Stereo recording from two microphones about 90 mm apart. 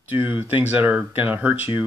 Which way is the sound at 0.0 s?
20° right (ahead or behind).